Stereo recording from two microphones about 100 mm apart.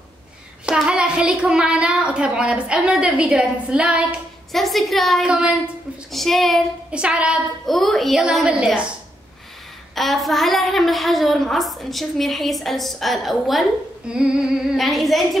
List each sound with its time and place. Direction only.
0.7 s a child's voice: 10° right (ahead or behind)
4.5 s a woman's voice: centre (ahead or behind)
6.1 s a woman's voice: centre (ahead or behind)
6.9 s a child's voice: 10° right (ahead or behind)
7.6 s a woman's voice: centre (ahead or behind)
9.9 s a woman's voice: centre (ahead or behind)